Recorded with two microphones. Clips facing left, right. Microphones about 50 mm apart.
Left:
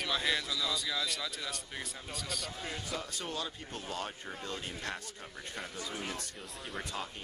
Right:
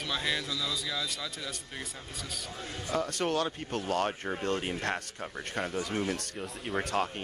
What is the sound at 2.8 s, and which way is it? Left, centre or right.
Speech, right.